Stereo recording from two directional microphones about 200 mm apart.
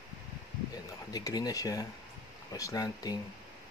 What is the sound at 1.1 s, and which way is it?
Speech, 20° left (ahead or behind).